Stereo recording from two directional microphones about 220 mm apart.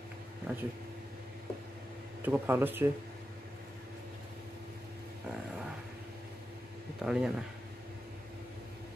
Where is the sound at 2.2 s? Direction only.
10° right (ahead or behind).